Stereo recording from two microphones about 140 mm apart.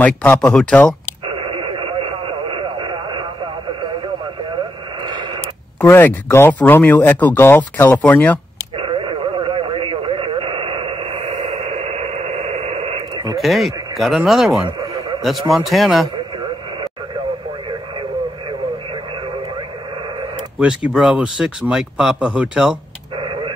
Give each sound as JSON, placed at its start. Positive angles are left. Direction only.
{"t": 0.0, "sound": "speech", "side_deg": 10}
{"t": 1.2, "sound": "radio", "side_deg": -40}
{"t": 5.0, "sound": "a sound", "side_deg": -30}
{"t": 5.8, "sound": "speech", "side_deg": 15}
{"t": 8.7, "sound": "dog", "side_deg": -40}
{"t": 9.2, "sound": "radio", "side_deg": -40}
{"t": 13.4, "sound": "speech", "side_deg": 0}
{"t": 20.9, "sound": "speech", "side_deg": -5}
{"t": 23.2, "sound": "a sound", "side_deg": -40}